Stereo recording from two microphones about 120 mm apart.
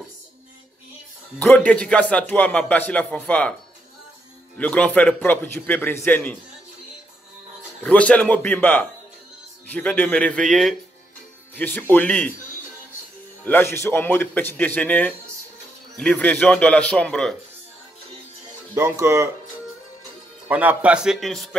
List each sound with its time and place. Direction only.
1.4 s a man's voice: 10° left (ahead or behind)
4.6 s a man's voice: 10° left (ahead or behind)
7.8 s a man's voice: 10° left (ahead or behind)
11.5 s a man's voice: 15° left (ahead or behind)
13.4 s a man's voice: 15° left (ahead or behind)
18.8 s speech: 25° right (ahead or behind)
20.4 s a man's voice: 15° right (ahead or behind)